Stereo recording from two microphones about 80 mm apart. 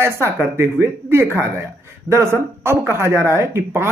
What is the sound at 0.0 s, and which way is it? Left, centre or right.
Speech, right.